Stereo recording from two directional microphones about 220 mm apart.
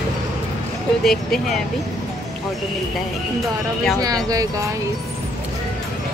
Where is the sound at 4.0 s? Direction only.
15° right (ahead or behind).